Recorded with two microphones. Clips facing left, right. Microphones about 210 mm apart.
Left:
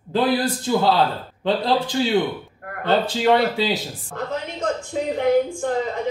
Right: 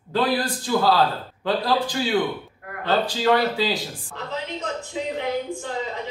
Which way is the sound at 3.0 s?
25° left (ahead or behind).